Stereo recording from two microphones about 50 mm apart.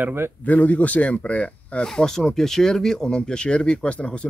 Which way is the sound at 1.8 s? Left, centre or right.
Centre.